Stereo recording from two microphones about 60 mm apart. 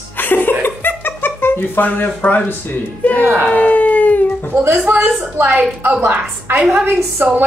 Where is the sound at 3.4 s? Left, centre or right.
Left.